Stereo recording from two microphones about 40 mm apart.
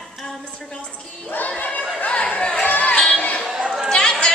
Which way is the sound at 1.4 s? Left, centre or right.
Left.